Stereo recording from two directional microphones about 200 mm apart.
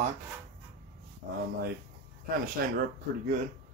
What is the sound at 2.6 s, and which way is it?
Speech, 50° right (ahead or behind).